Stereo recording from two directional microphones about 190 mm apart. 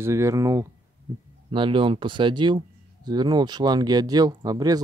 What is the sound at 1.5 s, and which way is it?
Speech, 25° right (ahead or behind).